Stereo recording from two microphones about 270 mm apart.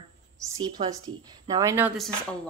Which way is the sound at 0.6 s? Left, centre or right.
Centre.